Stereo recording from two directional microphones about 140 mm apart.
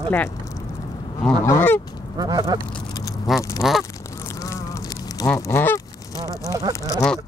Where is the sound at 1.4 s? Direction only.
20° left (ahead or behind).